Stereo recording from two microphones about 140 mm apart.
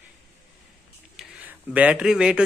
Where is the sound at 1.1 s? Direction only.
10° right (ahead or behind).